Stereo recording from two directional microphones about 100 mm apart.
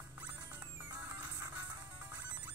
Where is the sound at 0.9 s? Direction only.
35° right (ahead or behind).